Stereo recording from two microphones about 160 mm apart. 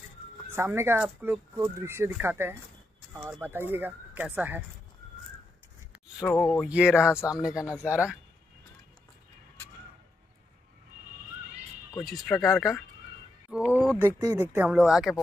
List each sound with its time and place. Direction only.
0.5 s speech: 15° right (ahead or behind)
6.4 s speech: 5° left (ahead or behind)
6.7 s speech: 5° right (ahead or behind)
7.1 s speech: 15° left (ahead or behind)
7.3 s speech: 5° right (ahead or behind)
12.0 s speech: centre (ahead or behind); by 14.7 s 15° right (ahead or behind)
14.7 s speech: 5° right (ahead or behind)